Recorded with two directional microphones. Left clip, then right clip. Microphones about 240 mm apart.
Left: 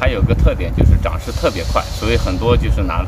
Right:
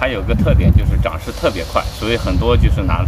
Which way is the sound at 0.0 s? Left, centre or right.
Centre.